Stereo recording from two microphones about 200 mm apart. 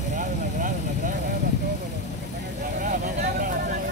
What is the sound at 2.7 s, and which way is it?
Vehicle, 45° right (ahead or behind).